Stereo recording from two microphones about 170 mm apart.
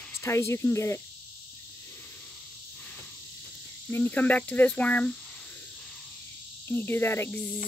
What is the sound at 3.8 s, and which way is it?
Speech, 10° left (ahead or behind).